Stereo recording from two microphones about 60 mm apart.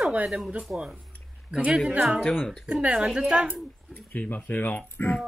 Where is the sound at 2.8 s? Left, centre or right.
Centre.